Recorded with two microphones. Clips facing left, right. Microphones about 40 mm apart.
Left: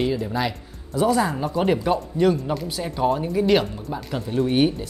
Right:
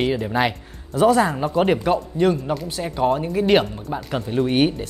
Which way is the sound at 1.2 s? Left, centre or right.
Centre.